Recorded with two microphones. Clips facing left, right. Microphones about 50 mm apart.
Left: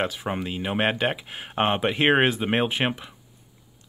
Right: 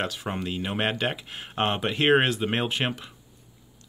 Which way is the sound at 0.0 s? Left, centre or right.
Centre.